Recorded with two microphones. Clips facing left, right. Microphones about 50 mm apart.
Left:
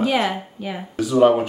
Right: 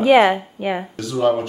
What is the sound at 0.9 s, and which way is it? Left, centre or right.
Speech, centre.